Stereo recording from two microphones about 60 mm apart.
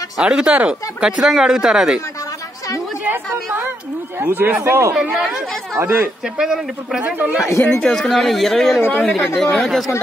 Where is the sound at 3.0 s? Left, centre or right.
Right.